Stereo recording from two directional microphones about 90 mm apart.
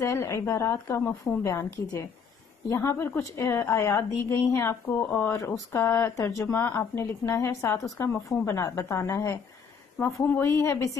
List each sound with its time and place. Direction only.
0.0 s a woman's voice: 30° left (ahead or behind)